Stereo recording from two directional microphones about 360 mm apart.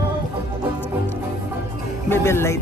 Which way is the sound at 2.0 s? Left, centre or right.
Centre.